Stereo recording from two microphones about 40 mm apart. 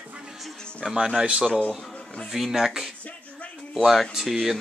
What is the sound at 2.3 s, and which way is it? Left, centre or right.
Speech, centre.